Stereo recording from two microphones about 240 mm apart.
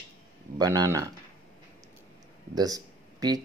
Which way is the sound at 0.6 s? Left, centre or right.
Centre.